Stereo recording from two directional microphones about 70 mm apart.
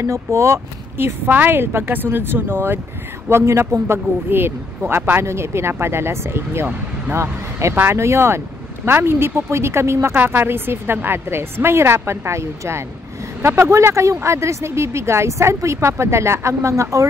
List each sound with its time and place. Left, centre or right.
0.0 s a man's voice: right
7.7 s speech: right
8.0 s a man's voice: right
10.1 s a man's voice: right